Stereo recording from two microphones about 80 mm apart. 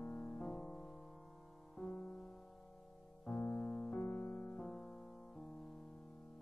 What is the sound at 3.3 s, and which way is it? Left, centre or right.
Music, centre.